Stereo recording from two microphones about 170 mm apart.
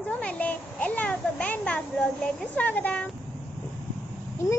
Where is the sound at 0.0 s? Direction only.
10° left (ahead or behind).